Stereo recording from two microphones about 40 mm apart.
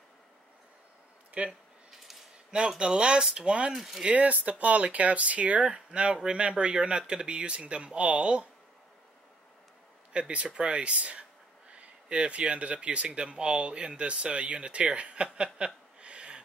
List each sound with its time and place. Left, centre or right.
1.4 s speech: right
2.8 s speech: right
3.7 s speech: centre
4.0 s speech: right
10.1 s speech: right